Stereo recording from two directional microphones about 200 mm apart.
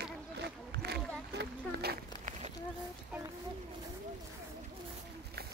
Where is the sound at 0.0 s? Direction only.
55° right (ahead or behind).